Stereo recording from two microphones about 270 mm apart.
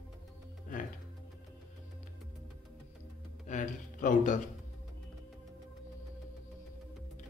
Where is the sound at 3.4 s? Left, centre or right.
Left.